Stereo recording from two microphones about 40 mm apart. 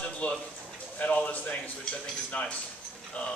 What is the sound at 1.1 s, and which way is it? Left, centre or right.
Speech, left.